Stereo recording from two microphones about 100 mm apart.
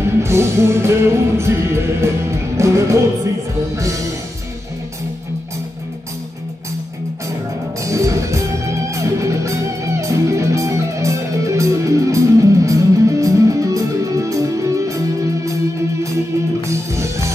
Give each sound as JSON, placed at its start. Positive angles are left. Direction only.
{"t": 0.0, "sound": "music", "side_deg": -25}
{"t": 7.8, "sound": "music", "side_deg": -30}